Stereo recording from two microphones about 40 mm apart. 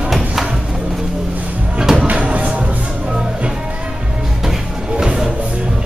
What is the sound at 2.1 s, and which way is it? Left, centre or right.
Music, right.